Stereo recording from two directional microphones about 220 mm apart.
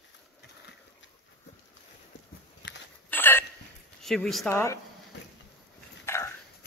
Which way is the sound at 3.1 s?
10° left (ahead or behind).